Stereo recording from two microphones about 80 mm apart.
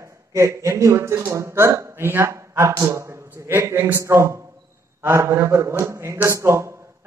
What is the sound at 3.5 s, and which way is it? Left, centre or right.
A man's voice, right.